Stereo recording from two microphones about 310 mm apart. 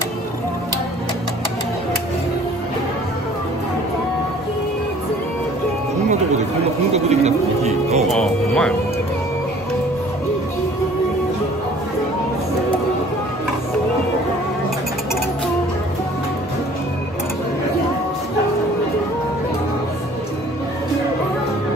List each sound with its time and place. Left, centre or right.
6.9 s speech: right
8.1 s speech: centre